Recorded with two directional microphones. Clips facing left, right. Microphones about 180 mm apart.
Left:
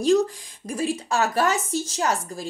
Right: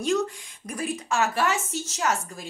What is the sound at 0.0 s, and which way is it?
A woman's voice, 35° left (ahead or behind).